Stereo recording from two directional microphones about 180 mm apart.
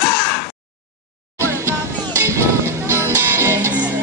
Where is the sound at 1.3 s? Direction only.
15° right (ahead or behind).